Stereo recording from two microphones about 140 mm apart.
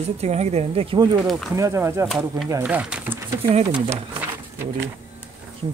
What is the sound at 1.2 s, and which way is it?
Speech, centre (ahead or behind).